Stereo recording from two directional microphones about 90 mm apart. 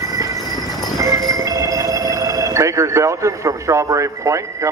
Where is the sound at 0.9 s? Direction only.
40° right (ahead or behind).